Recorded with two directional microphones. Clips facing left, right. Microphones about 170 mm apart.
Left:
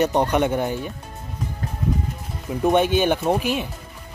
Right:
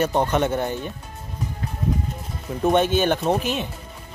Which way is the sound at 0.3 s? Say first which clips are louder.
Left 1 dB; 15° left (ahead or behind).